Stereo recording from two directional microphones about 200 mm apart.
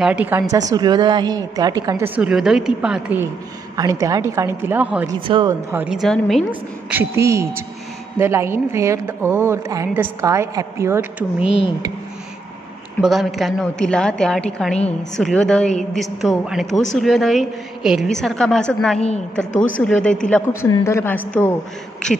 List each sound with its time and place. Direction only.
0.0 s a woman's voice: 5° right (ahead or behind)
0.5 s a woman's voice: 20° right (ahead or behind)
3.7 s a woman's voice: 15° right (ahead or behind)
5.2 s speech: 25° right (ahead or behind)
5.7 s a woman's voice: 5° right (ahead or behind)
6.9 s a woman's voice: 10° right (ahead or behind)
13.0 s a woman's voice: centre (ahead or behind)